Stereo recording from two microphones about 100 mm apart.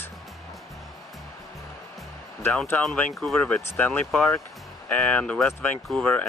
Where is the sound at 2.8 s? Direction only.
5° left (ahead or behind).